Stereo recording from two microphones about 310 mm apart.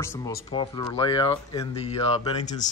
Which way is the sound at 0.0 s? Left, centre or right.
Centre.